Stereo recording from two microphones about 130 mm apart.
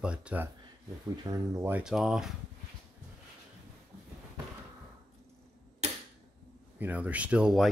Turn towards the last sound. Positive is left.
turn(degrees=-5)  # may be behind; listen again after turning